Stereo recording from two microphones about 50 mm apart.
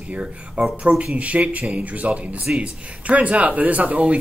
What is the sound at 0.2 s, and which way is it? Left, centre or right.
Speech, centre.